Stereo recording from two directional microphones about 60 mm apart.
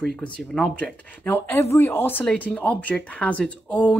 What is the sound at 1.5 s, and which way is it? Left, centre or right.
Speech, left.